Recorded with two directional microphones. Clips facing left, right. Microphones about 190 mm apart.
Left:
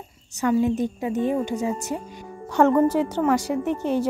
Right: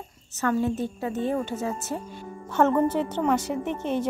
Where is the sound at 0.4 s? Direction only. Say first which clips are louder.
Left 4 dB; 15° left (ahead or behind).